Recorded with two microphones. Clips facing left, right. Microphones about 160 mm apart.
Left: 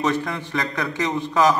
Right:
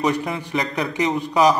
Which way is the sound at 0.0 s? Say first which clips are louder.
Right 1 dB; 15° right (ahead or behind).